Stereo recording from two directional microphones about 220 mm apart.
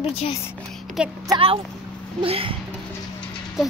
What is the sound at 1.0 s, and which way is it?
Speech, 5° right (ahead or behind).